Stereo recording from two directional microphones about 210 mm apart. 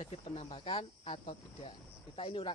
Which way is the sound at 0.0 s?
25° left (ahead or behind).